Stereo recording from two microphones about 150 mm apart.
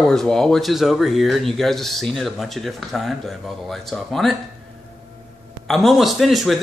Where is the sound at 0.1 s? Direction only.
5° left (ahead or behind).